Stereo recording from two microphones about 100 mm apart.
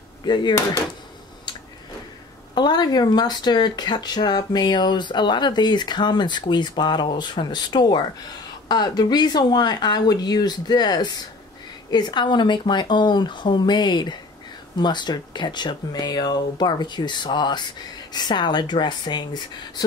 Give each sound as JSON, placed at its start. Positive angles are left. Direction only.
{"t": 0.2, "sound": "speech", "side_deg": 50}
{"t": 2.5, "sound": "speech", "side_deg": 45}